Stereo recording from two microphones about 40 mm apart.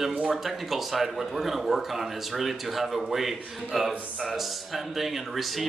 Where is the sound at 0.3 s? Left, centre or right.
Centre.